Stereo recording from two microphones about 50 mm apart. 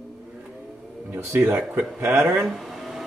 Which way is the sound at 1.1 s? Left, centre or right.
Right.